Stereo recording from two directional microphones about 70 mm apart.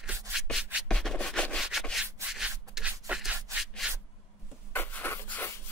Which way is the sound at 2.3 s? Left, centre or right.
Centre.